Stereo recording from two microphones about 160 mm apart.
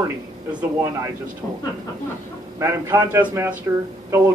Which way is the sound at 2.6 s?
15° right (ahead or behind).